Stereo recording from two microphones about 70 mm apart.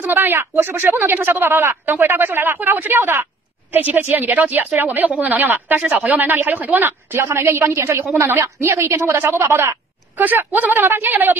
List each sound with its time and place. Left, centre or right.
0.0 s a woman's voice: right
8.0 s speech: right
10.1 s a woman's voice: right